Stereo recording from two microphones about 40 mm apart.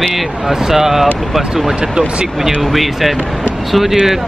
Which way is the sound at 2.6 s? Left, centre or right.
Centre.